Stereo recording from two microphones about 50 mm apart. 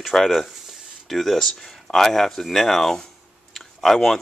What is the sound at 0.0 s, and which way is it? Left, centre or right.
Speech, centre.